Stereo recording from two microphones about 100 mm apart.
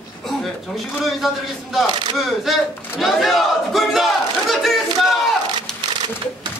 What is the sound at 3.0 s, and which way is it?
Battle cry, centre (ahead or behind).